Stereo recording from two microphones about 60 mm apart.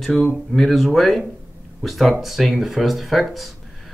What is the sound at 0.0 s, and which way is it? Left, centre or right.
Speech, centre.